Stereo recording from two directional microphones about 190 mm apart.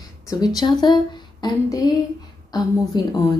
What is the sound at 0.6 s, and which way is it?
A woman's voice, 25° left (ahead or behind).